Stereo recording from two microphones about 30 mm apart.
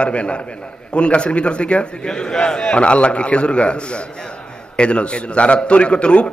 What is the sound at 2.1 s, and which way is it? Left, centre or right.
A man's voice, left.